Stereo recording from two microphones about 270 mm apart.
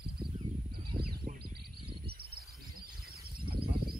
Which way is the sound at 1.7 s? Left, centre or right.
Centre.